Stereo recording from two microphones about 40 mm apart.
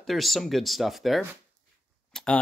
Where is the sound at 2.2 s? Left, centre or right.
Centre.